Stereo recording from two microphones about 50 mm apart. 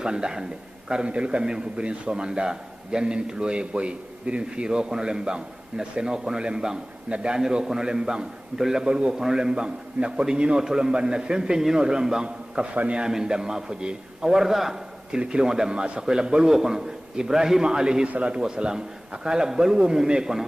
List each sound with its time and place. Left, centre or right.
0.0 s a man's voice: centre
12.7 s a man's voice: right